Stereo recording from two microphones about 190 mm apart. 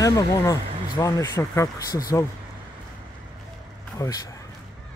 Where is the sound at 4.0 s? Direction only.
15° left (ahead or behind).